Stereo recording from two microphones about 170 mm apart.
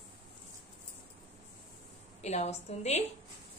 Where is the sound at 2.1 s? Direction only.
40° left (ahead or behind).